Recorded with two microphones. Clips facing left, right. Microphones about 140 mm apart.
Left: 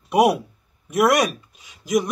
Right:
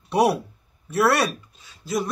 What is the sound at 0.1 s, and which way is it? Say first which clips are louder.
Speech: left 3 dB; 10° left (ahead or behind).